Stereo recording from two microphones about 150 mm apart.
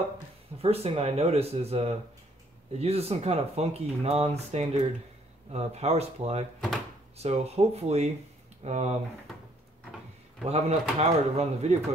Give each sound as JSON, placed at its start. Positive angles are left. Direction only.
{"t": 0.6, "sound": "speech", "side_deg": -40}
{"t": 10.5, "sound": "speech", "side_deg": -45}